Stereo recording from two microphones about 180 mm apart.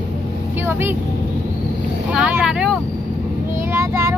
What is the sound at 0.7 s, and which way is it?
Speech, 10° right (ahead or behind).